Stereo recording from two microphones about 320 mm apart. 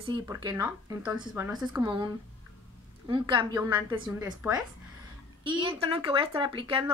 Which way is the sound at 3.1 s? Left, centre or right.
Centre.